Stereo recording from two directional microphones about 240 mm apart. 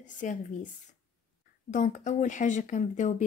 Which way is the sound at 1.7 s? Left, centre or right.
Left.